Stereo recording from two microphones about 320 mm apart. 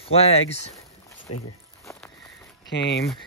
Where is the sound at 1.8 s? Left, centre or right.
Centre.